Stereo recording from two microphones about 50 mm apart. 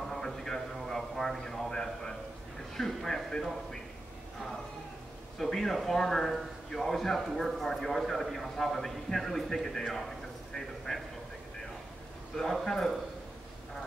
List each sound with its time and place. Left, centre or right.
0.1 s a sound: centre
2.7 s a man's voice: centre
5.4 s speech: centre
10.9 s vehicle: centre
12.4 s a man's voice: centre